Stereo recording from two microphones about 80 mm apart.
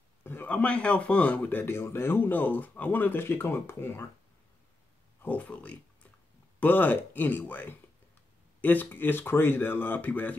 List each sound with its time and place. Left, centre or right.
0.2 s a man's voice: left
0.5 s speech: centre; by 4.1 s left
5.2 s speech: centre